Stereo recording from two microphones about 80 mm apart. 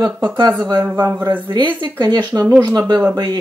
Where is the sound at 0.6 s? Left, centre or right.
Right.